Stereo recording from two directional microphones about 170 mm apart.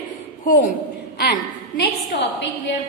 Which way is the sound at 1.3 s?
70° left (ahead or behind).